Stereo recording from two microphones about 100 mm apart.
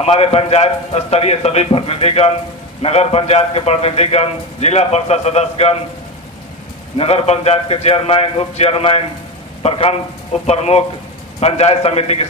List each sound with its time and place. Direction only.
0.0 s a man's voice: 90° left
7.0 s a man's voice: 85° left